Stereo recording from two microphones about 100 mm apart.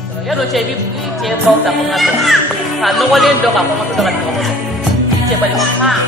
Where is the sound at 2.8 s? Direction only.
Centre (ahead or behind).